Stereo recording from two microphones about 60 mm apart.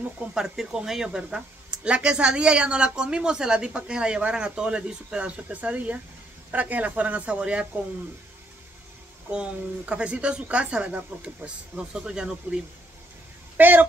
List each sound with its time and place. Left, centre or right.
0.3 s a woman's voice: centre
9.3 s a woman's voice: centre
13.6 s speech: right